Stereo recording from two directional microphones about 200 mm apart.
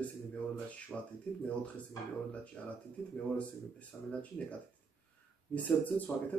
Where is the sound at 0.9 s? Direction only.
5° left (ahead or behind).